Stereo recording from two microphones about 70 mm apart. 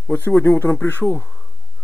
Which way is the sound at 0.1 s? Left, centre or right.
Left.